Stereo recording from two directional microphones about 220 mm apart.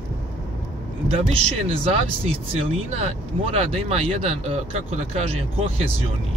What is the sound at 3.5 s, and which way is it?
Speech, 25° right (ahead or behind).